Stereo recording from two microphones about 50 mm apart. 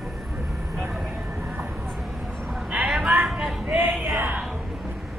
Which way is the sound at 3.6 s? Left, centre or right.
Right.